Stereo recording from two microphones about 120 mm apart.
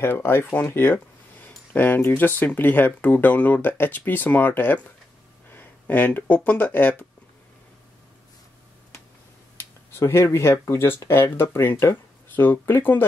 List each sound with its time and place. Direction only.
0.0 s speech: 20° left (ahead or behind)
9.8 s speech: 20° left (ahead or behind)